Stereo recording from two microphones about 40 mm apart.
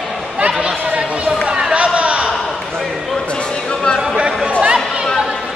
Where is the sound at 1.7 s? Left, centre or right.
Right.